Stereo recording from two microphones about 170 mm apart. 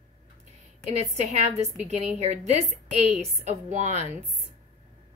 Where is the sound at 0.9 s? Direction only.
40° right (ahead or behind).